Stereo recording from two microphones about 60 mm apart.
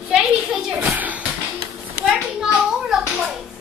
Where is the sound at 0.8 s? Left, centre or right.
Right.